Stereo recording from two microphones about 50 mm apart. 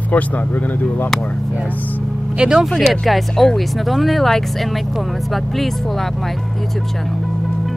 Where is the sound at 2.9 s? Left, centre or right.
Centre.